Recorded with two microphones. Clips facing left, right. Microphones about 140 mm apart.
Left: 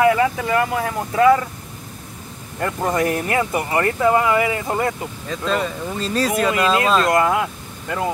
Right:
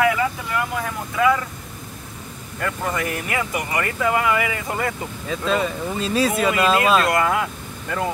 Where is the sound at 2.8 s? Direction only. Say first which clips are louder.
Left 8 dB; 40° left (ahead or behind).